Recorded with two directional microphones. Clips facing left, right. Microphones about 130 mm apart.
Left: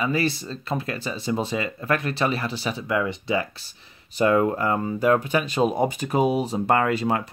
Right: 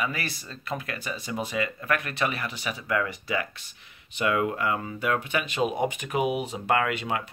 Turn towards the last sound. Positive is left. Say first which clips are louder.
# left 6 dB
turn(degrees=35)  # may be behind; listen again after turning